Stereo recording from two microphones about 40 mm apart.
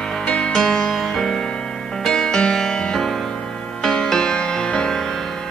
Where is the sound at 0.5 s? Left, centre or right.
Centre.